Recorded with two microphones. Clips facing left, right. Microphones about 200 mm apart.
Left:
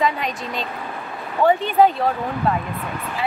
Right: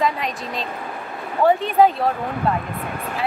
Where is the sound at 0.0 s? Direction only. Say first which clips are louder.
Even; centre (ahead or behind).